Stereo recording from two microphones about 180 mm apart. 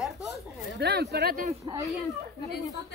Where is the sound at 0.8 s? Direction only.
65° right (ahead or behind).